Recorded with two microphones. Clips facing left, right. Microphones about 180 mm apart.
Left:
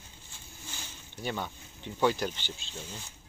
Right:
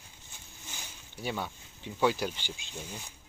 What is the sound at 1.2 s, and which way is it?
Speech, 5° right (ahead or behind).